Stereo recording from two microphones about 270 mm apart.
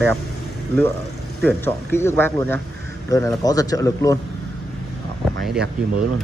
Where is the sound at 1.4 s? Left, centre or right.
Centre.